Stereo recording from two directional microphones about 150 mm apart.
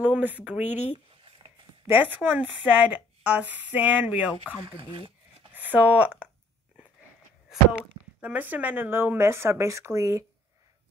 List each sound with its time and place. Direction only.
0.0 s a woman's voice: 10° right (ahead or behind)
1.9 s a woman's voice: 10° right (ahead or behind)
4.7 s dog: 35° right (ahead or behind)
5.5 s speech: 10° right (ahead or behind)
8.2 s a woman's voice: 10° right (ahead or behind)